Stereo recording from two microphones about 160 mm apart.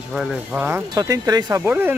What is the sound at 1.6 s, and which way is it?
Speech, 10° right (ahead or behind).